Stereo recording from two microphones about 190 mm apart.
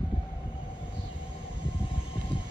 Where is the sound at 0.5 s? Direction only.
5° right (ahead or behind).